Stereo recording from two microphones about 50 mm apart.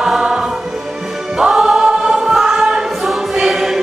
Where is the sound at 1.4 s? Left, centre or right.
Centre.